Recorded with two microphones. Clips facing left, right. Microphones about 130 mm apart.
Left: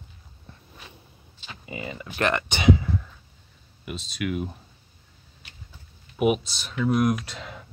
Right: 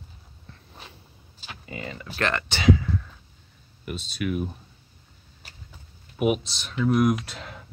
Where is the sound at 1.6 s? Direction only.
10° left (ahead or behind).